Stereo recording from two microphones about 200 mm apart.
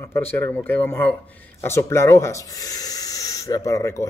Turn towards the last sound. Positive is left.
turn(degrees=15)  # may be behind; listen again after turning